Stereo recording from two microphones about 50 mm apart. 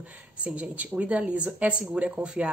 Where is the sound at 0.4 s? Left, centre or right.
Right.